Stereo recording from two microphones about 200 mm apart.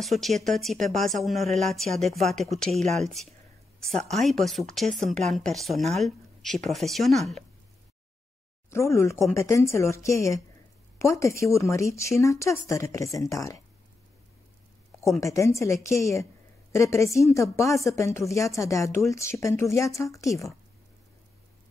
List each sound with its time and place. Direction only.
0.0 s a woman's voice: centre (ahead or behind)
8.6 s speech: 15° left (ahead or behind)
15.0 s speech: 15° left (ahead or behind)